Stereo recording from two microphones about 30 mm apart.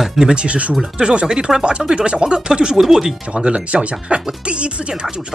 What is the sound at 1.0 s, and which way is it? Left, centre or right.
Speech, right.